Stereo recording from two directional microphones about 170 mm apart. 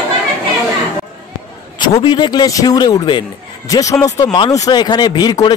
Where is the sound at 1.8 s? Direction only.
25° left (ahead or behind).